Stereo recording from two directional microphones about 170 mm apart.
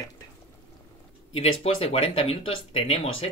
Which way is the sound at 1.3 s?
35° left (ahead or behind).